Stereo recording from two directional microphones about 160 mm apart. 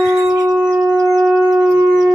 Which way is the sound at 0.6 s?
5° right (ahead or behind).